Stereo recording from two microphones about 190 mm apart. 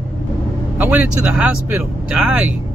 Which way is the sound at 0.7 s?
10° right (ahead or behind).